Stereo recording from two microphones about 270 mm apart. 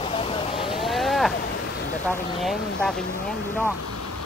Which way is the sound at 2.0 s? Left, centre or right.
Centre.